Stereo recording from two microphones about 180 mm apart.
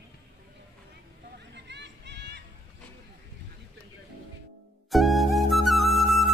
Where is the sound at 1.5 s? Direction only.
75° right (ahead or behind).